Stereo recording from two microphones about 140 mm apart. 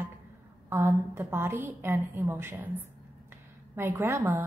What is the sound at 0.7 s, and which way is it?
A woman's voice, 15° right (ahead or behind).